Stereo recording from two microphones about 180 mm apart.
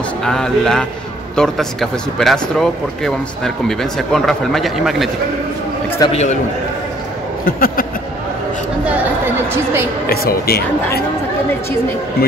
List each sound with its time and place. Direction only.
0.2 s speech: 5° left (ahead or behind)
6.0 s a man's voice: 20° left (ahead or behind)
7.4 s speech: 55° left (ahead or behind)
8.8 s chatter: 10° right (ahead or behind)
10.0 s speech: 60° left (ahead or behind)